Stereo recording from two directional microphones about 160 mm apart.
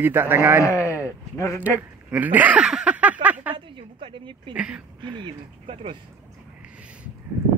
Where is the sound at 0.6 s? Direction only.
20° left (ahead or behind).